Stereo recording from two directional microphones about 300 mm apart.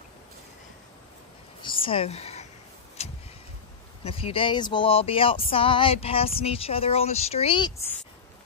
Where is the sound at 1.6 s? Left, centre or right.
Centre.